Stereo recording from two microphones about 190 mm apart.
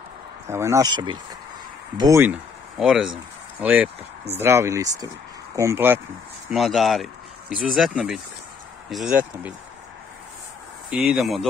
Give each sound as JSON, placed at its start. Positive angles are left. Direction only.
{"t": 0.5, "sound": "speech", "side_deg": -15}
{"t": 2.8, "sound": "speech", "side_deg": -5}
{"t": 6.5, "sound": "speech", "side_deg": 0}
{"t": 10.9, "sound": "speech", "side_deg": -5}